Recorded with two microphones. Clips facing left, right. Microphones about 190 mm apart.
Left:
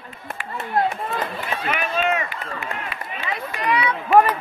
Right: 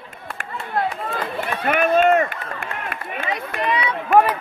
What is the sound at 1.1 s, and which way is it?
Run, 50° right (ahead or behind).